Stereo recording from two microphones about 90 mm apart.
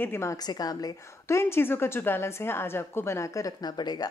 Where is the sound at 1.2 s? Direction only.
30° left (ahead or behind).